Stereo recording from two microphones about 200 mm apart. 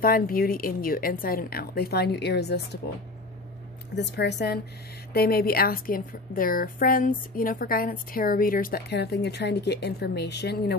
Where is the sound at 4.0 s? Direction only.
60° left (ahead or behind).